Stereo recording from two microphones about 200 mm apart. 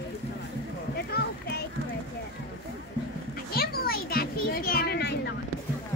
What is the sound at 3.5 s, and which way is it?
Children playing, 50° left (ahead or behind).